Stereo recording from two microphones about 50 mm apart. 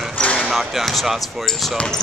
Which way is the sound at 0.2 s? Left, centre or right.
Left.